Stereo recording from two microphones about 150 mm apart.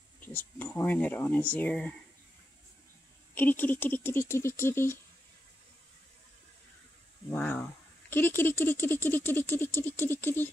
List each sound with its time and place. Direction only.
0.2 s speech: 15° left (ahead or behind)
3.3 s speech: 10° left (ahead or behind)
7.2 s speech: 10° left (ahead or behind)